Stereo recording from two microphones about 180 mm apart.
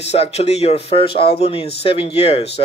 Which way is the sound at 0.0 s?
35° left (ahead or behind).